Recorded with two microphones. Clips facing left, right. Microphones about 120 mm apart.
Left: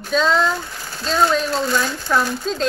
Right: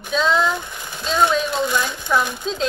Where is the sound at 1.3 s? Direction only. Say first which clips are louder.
Left 1 dB; centre (ahead or behind).